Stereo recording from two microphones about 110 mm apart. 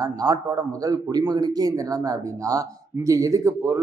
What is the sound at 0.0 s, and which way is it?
Speech, 35° right (ahead or behind).